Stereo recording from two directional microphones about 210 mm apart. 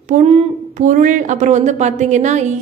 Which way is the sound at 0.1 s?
35° right (ahead or behind).